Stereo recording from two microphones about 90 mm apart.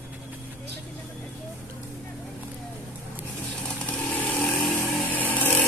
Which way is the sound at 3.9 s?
15° left (ahead or behind).